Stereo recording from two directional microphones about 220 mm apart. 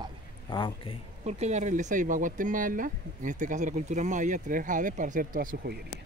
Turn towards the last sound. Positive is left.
turn(degrees=-40)  # may be behind; listen again after turning